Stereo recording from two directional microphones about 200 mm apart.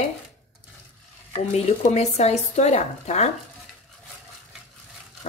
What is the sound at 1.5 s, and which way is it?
A woman's voice, 35° left (ahead or behind).